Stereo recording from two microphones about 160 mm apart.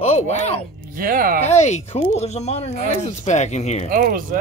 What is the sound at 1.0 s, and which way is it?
Speech, 60° right (ahead or behind).